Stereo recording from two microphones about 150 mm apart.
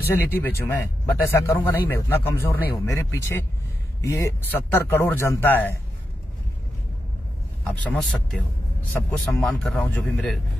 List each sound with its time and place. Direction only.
0.0 s a man's voice: 15° left (ahead or behind)
7.6 s a man's voice: 10° left (ahead or behind)
9.3 s a man's voice: 15° left (ahead or behind)
9.6 s speech: centre (ahead or behind)